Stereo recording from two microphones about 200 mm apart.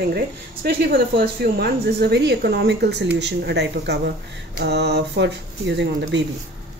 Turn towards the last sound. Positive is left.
turn(degrees=-60)  # may be behind; listen again after turning